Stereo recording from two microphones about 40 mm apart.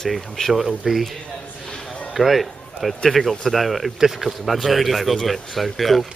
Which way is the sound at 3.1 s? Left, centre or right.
Centre.